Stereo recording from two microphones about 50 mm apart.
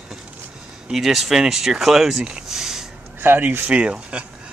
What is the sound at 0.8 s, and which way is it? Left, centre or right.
Speech, centre.